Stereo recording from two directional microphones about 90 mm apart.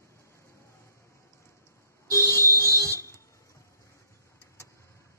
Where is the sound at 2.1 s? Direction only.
35° left (ahead or behind).